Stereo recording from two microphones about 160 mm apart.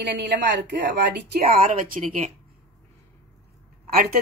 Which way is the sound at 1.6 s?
50° right (ahead or behind).